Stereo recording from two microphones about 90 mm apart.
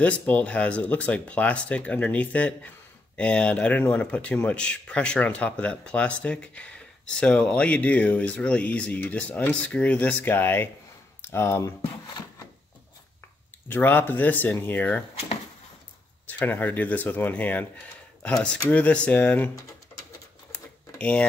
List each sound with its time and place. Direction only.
0.0 s speech: 15° left (ahead or behind)
13.7 s speech: 20° left (ahead or behind)
16.3 s speech: 20° left (ahead or behind)
20.5 s a sound: 15° left (ahead or behind)